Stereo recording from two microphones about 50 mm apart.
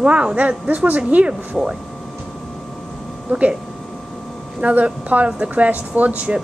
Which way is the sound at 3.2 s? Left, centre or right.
Right.